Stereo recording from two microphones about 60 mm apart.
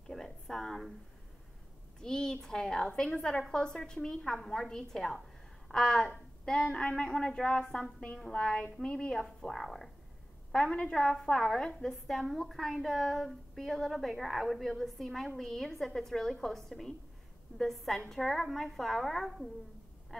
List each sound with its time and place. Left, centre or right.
0.0 s a sound: centre
2.0 s a child's voice: centre
2.9 s a woman's voice: centre
9.5 s a woman's voice: centre
10.5 s a woman's voice: centre